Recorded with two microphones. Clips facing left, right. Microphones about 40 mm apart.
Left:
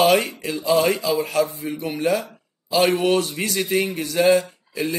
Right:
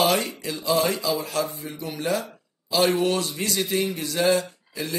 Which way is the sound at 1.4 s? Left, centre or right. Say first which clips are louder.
Left 6 dB; left.